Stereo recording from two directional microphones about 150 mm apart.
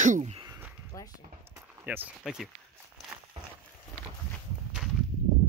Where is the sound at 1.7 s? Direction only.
10° right (ahead or behind).